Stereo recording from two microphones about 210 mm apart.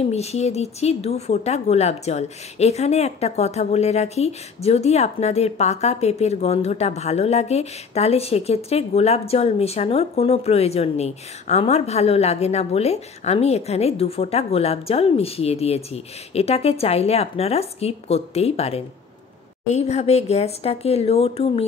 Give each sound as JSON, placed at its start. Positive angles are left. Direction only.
{"t": 0.0, "sound": "speech", "side_deg": 30}